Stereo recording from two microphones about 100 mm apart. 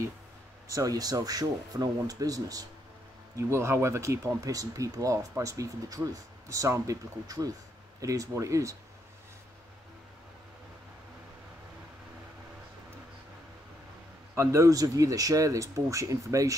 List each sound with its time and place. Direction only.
0.7 s speech: 35° right (ahead or behind)
14.3 s speech: 25° right (ahead or behind)